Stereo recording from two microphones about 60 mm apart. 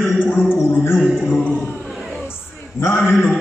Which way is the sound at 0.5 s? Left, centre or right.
Left.